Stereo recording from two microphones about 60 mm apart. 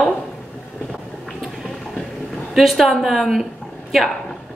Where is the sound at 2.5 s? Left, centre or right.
Centre.